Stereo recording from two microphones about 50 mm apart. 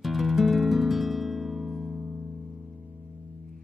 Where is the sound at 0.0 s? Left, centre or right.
Centre.